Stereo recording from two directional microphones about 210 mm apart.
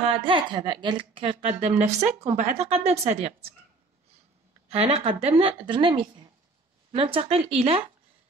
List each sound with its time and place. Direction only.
0.1 s a woman's voice: 25° right (ahead or behind)
4.6 s a woman's voice: 30° right (ahead or behind)